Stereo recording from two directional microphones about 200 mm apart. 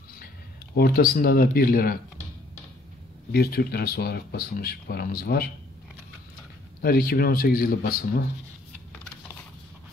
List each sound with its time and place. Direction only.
0.7 s speech: 50° left (ahead or behind)
3.3 s speech: 50° left (ahead or behind)
6.8 s speech: 50° left (ahead or behind)